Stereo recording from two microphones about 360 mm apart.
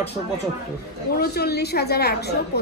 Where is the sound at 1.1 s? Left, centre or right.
Left.